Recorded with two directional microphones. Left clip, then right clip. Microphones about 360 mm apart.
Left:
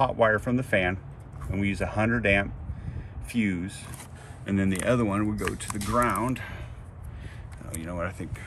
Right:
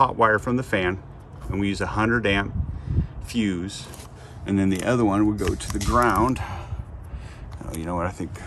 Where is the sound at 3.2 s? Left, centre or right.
Right.